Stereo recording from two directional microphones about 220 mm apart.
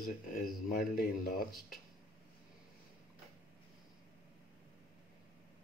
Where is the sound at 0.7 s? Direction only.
40° left (ahead or behind).